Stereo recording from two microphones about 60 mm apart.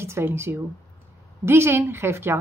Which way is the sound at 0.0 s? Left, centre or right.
Right.